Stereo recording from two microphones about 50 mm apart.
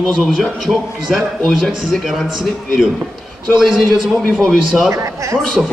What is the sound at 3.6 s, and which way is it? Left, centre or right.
Speech, centre.